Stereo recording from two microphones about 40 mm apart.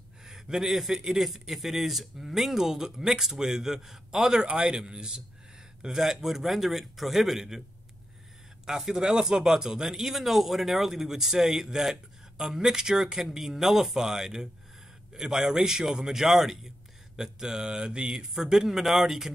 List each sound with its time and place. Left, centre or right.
0.2 s speech: centre
4.4 s speech: right
8.6 s speech: centre